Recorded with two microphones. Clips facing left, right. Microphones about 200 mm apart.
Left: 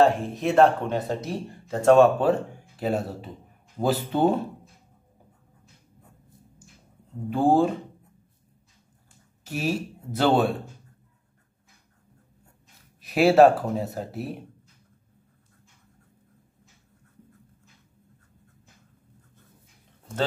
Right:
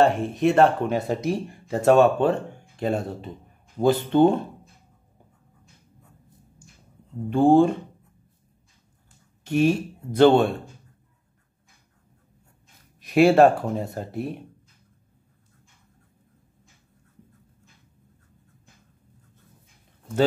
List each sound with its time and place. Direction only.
0.0 s speech: centre (ahead or behind)
1.9 s speech: centre (ahead or behind)
7.2 s speech: 5° left (ahead or behind)
9.4 s speech: 5° left (ahead or behind)
13.0 s speech: centre (ahead or behind)